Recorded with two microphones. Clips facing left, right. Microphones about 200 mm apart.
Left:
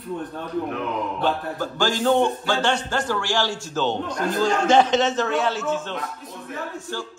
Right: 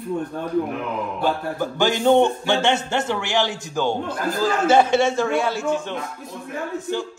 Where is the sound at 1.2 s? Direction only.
10° right (ahead or behind).